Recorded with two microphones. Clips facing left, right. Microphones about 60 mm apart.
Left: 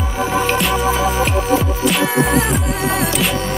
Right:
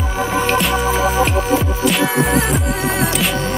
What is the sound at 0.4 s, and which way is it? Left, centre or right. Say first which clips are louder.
Music: right 1 dB; centre.